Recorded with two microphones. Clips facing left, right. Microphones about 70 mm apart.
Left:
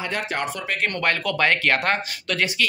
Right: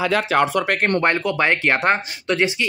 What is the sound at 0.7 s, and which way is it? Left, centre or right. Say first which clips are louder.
Speech: right 6 dB; right.